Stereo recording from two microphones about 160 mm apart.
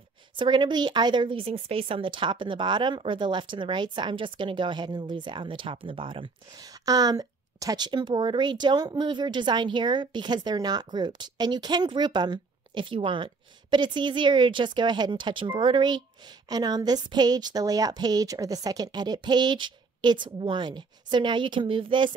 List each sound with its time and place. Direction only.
0.4 s speech: 30° right (ahead or behind)